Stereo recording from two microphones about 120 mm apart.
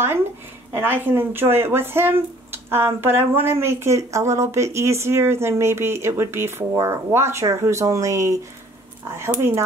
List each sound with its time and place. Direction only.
0.7 s speech: 20° right (ahead or behind)